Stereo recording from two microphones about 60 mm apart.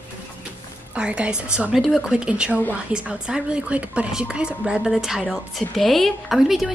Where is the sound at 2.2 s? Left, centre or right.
Centre.